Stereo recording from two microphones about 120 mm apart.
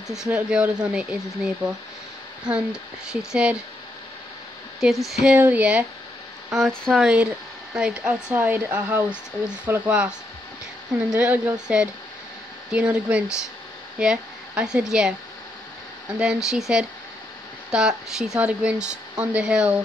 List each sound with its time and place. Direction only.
0.1 s speech: 5° right (ahead or behind)
3.1 s speech: 5° right (ahead or behind)
4.7 s speech: centre (ahead or behind)
5.2 s speech: 10° right (ahead or behind)
6.5 s speech: 5° left (ahead or behind)
16.2 s speech: 5° right (ahead or behind)